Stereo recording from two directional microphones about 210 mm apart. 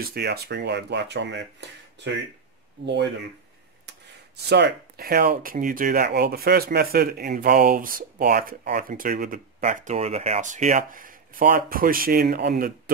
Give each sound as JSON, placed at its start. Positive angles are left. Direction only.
{"t": 0.0, "sound": "speech", "side_deg": -50}
{"t": 2.8, "sound": "speech", "side_deg": -55}
{"t": 4.5, "sound": "speech", "side_deg": -55}